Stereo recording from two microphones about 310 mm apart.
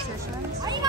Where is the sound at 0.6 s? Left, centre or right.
Centre.